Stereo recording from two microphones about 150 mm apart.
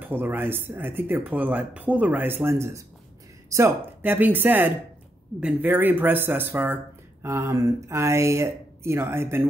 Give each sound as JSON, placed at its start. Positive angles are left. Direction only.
{"t": 0.0, "sound": "speech", "side_deg": -15}